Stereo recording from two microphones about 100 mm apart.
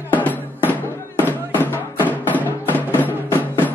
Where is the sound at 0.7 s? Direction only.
20° left (ahead or behind).